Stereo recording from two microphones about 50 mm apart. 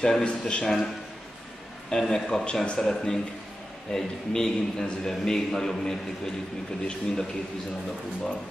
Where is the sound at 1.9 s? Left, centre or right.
Centre.